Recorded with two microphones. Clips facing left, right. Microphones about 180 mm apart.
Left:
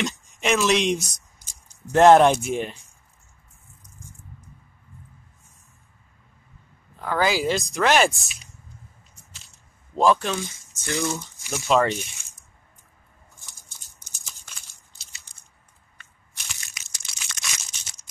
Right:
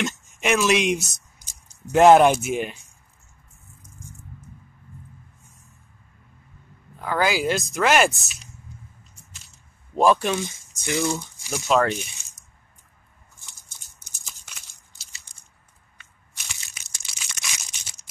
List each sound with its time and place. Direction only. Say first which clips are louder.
0.0 s speech: even; centre (ahead or behind)
7.0 s speech: even; centre (ahead or behind)
9.9 s speech: right 1 dB; 15° right (ahead or behind)
11.5 s speech: even; centre (ahead or behind)
16.6 s crushing: left 1 dB; 20° right (ahead or behind)